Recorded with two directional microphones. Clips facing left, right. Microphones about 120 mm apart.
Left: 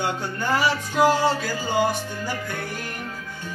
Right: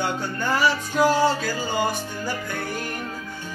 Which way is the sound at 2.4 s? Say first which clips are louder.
Right 2 dB; 25° right (ahead or behind).